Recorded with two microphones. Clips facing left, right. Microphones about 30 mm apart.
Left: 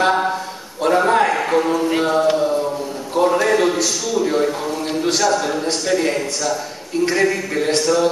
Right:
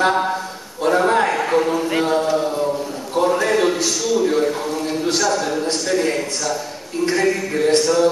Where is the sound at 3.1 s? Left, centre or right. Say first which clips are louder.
Left 2 dB; centre.